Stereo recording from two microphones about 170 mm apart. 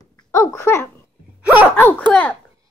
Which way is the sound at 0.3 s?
15° left (ahead or behind).